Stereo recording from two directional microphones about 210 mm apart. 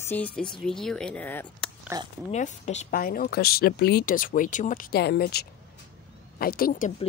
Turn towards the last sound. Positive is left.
turn(degrees=40)  # may be behind; listen again after turning